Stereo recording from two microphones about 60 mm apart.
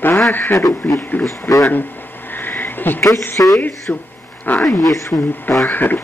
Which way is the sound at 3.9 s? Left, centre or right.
Left.